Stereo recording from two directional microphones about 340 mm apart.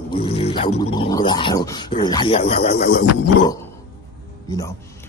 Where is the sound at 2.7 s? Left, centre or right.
Left.